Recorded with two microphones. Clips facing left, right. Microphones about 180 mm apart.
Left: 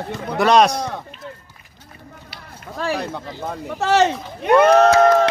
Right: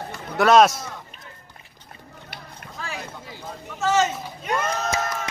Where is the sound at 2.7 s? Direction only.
70° left (ahead or behind).